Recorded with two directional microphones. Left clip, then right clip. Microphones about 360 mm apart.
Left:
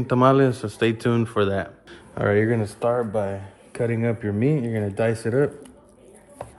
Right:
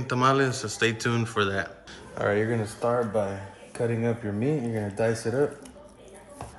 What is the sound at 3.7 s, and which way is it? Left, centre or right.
Speech, left.